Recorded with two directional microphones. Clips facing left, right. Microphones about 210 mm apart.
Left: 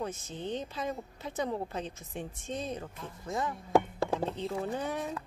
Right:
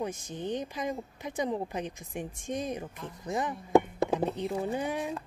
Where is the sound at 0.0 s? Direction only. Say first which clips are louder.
Right 2 dB; 15° right (ahead or behind).